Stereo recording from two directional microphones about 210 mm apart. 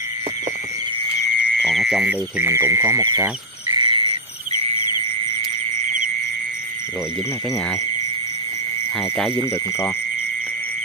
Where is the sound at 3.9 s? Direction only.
30° left (ahead or behind).